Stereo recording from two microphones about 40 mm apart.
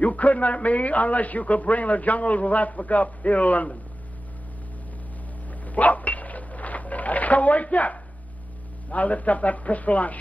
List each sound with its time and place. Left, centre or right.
0.0 s a man's voice: left
5.5 s dog: left
8.9 s a man's voice: left